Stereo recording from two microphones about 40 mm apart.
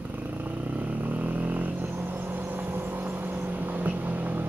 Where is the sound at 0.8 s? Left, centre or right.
Right.